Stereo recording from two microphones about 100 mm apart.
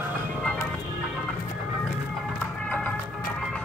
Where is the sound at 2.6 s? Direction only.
10° left (ahead or behind).